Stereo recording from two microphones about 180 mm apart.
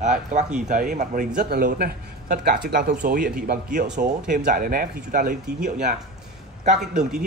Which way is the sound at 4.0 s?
45° right (ahead or behind).